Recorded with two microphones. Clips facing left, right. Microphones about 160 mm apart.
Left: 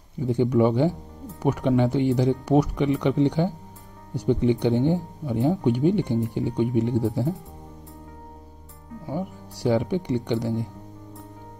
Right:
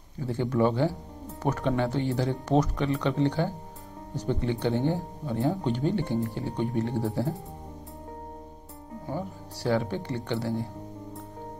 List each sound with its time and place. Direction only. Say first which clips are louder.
0.2 s speech: left 5 dB; 15° left (ahead or behind)
9.0 s speech: left 4 dB; 15° left (ahead or behind)